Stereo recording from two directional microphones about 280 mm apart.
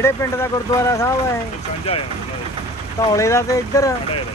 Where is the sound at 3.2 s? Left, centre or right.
Centre.